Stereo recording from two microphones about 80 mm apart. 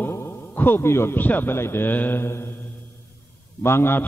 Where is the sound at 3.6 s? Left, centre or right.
Left.